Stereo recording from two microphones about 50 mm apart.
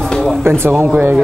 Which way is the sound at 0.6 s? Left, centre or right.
Right.